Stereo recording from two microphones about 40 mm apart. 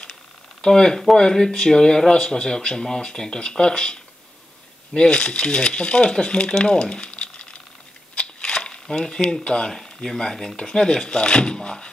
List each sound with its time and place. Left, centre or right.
0.6 s speech: centre
6.6 s a sound: left
8.8 s speech: centre
9.7 s speech: centre